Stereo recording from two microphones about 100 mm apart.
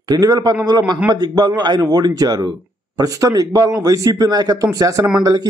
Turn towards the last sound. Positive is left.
turn(degrees=-40)  # may be behind; listen again after turning